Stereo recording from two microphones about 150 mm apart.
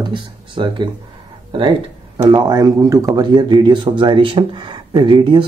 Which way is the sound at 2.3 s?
25° right (ahead or behind).